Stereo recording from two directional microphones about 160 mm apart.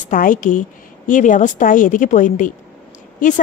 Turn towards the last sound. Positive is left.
turn(degrees=55)  # may be behind; listen again after turning